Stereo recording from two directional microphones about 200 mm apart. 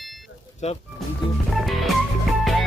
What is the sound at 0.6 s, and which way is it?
Speech, 35° left (ahead or behind).